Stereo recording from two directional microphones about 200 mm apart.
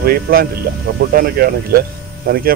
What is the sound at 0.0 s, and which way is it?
Speech, 50° right (ahead or behind).